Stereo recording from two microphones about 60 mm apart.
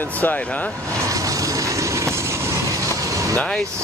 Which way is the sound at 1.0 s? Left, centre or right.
Right.